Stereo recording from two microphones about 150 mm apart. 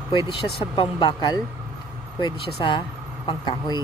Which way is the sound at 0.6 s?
35° left (ahead or behind).